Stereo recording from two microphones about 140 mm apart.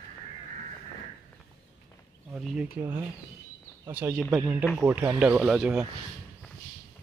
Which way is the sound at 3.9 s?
10° right (ahead or behind).